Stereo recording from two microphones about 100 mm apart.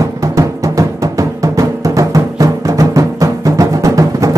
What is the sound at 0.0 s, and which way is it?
Music, 35° right (ahead or behind).